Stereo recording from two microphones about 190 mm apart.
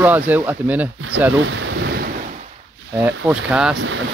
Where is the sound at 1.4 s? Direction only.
80° right; by 2.0 s 65° right (ahead or behind).